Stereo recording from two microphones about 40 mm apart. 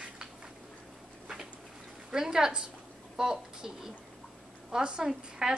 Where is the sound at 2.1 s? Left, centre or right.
Centre.